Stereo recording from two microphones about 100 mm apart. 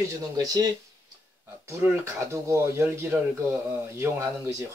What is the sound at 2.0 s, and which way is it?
Speech, 30° right (ahead or behind).